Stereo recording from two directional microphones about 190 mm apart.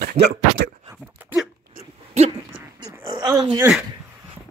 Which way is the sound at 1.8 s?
35° right (ahead or behind).